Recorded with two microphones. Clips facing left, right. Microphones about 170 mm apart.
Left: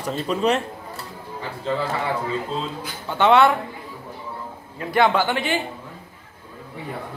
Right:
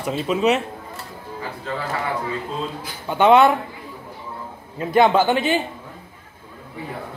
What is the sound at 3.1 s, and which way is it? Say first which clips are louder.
Speech: right 2 dB; 15° right (ahead or behind).